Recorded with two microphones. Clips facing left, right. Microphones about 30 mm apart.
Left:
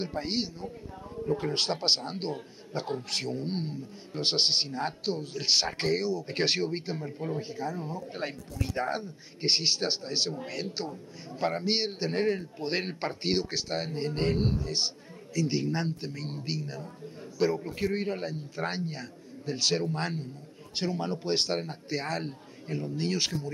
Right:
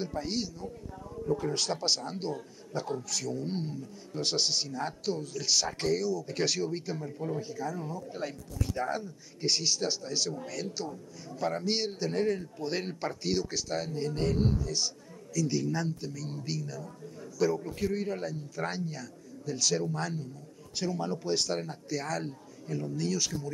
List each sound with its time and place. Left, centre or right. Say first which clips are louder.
0.0 s a man's voice: left 2 dB; left